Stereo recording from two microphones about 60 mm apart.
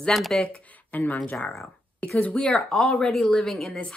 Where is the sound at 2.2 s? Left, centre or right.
Left.